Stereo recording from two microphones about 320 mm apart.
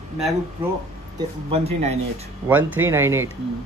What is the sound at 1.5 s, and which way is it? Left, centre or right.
Speech, centre.